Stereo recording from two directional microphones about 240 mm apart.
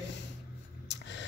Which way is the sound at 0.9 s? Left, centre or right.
Left.